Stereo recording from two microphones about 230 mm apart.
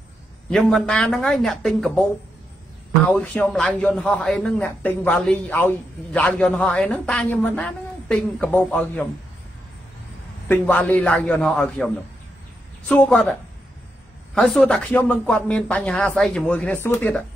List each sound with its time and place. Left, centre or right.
0.5 s a man's voice: centre
3.1 s a man's voice: centre
10.5 s a man's voice: centre